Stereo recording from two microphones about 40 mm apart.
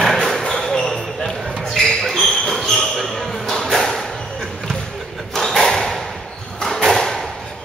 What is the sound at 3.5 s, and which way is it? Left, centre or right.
Music, centre.